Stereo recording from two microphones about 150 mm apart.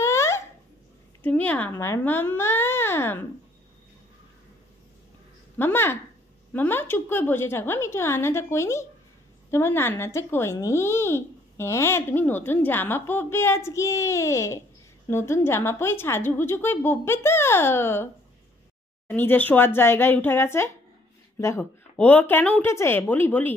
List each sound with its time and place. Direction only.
0.0 s a sound: 20° left (ahead or behind)
1.2 s speech: 10° left (ahead or behind)
5.6 s a child's voice: 15° left (ahead or behind)